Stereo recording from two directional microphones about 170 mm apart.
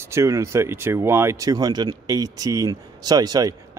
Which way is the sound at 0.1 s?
15° right (ahead or behind).